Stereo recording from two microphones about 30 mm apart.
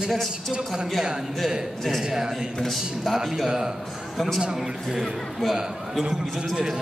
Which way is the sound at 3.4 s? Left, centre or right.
Right.